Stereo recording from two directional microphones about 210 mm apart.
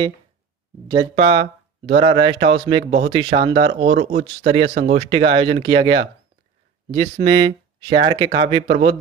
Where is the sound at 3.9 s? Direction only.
35° right (ahead or behind).